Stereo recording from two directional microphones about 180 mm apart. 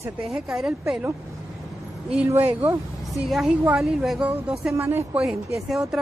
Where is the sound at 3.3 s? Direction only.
Centre (ahead or behind).